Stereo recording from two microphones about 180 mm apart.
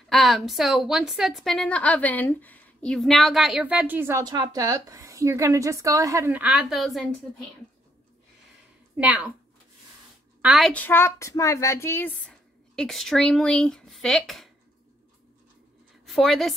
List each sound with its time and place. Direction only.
0.1 s a woman's voice: centre (ahead or behind)
4.2 s a woman's voice: 20° right (ahead or behind); by 7.1 s centre (ahead or behind)
8.9 s speech: 10° right (ahead or behind)
10.4 s a woman's voice: 5° right (ahead or behind)
10.7 s a woman's voice: 10° left (ahead or behind)
16.1 s a woman's voice: centre (ahead or behind)